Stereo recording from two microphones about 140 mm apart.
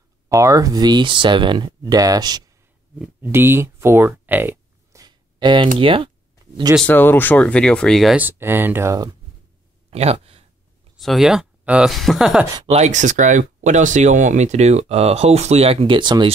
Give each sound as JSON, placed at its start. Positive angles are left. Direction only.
{"t": 0.3, "sound": "speech", "side_deg": -25}
{"t": 3.0, "sound": "speech", "side_deg": -15}
{"t": 5.0, "sound": "a sound", "side_deg": -35}
{"t": 6.9, "sound": "speech", "side_deg": 15}
{"t": 8.2, "sound": "speech", "side_deg": -15}
{"t": 9.8, "sound": "a sound", "side_deg": -45}
{"t": 11.0, "sound": "speech", "side_deg": 0}
{"t": 12.6, "sound": "speech", "side_deg": -50}